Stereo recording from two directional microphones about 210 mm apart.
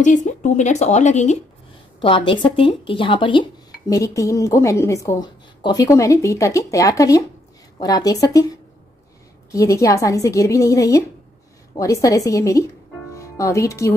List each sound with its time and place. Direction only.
0.0 s speech: 35° left (ahead or behind); by 8.5 s 15° left (ahead or behind)
9.5 s speech: 15° left (ahead or behind)